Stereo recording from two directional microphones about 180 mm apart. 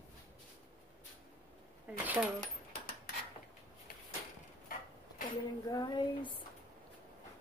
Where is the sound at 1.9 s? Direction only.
10° right (ahead or behind).